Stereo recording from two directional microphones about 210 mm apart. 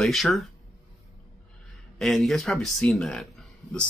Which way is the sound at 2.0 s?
Centre (ahead or behind).